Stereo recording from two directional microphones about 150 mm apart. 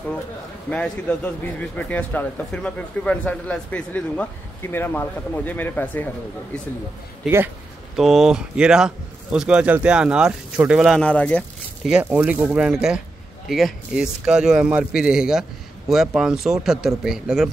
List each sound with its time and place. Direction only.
0.7 s a man's voice: 10° left (ahead or behind)
7.2 s speech: 15° right (ahead or behind)
7.9 s speech: centre (ahead or behind)
11.0 s a man's voice: 10° left (ahead or behind)
11.8 s speech: 10° right (ahead or behind)